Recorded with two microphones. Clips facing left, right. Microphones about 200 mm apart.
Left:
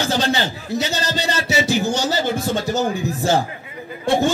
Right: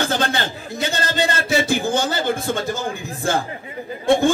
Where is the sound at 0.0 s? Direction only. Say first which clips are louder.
Left 1 dB; 55° right (ahead or behind).